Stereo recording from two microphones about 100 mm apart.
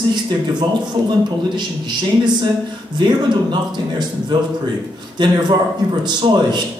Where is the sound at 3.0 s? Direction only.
50° right (ahead or behind).